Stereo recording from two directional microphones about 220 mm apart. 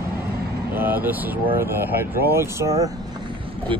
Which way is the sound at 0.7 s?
10° right (ahead or behind).